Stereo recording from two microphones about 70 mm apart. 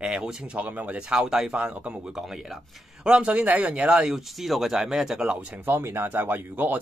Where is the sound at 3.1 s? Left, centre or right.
Centre.